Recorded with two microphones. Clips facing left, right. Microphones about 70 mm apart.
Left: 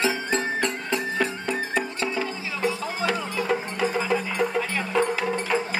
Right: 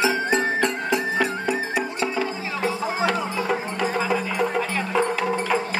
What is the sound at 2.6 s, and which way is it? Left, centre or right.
Music, right.